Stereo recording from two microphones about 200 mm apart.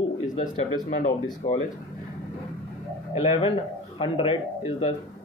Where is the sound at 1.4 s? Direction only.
25° left (ahead or behind).